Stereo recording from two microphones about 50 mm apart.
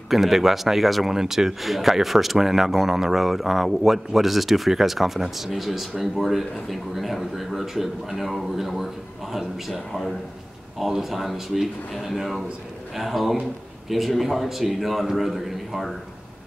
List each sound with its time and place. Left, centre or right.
0.1 s speech: centre